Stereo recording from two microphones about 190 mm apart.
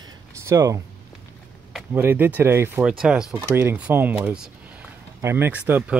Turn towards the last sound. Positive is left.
turn(degrees=-5)  # may be behind; listen again after turning